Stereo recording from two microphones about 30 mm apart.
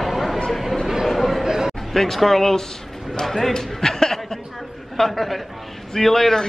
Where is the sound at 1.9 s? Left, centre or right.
Centre.